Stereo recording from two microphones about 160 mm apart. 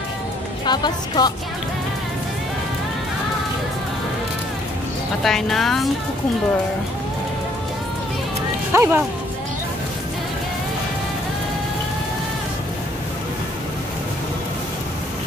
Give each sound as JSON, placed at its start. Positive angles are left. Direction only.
{"t": 0.7, "sound": "speech", "side_deg": 25}
{"t": 5.2, "sound": "a woman's voice", "side_deg": 0}
{"t": 8.7, "sound": "speech", "side_deg": -15}